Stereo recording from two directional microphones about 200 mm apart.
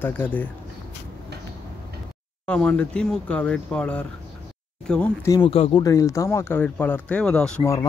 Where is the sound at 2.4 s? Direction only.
5° left (ahead or behind).